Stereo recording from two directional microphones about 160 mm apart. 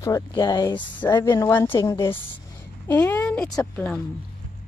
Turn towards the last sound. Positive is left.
turn(degrees=5)  # may be behind; listen again after turning